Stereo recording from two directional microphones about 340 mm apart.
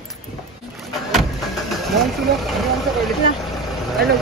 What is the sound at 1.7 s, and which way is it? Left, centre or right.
Speech, centre.